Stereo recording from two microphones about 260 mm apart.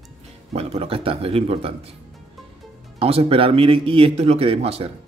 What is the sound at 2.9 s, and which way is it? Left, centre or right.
Speech, right.